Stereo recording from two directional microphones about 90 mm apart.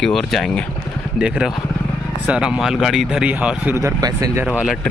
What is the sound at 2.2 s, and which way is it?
Speech, 10° right (ahead or behind).